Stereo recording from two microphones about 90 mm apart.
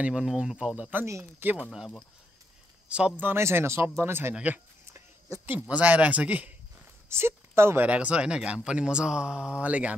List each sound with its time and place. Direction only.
0.0 s a man's voice: 10° right (ahead or behind)
2.9 s a man's voice: 10° right (ahead or behind)
3.3 s speech: 25° right (ahead or behind)
5.5 s a man's voice: 15° right (ahead or behind)
7.1 s speech: 30° right (ahead or behind)
7.9 s a man's voice: 15° right (ahead or behind)